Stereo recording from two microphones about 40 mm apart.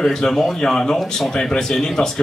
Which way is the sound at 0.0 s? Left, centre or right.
Centre.